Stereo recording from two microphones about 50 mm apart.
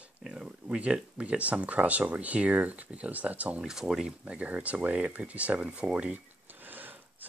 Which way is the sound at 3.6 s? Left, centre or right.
Centre.